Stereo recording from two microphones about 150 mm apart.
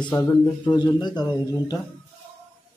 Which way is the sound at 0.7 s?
30° left (ahead or behind).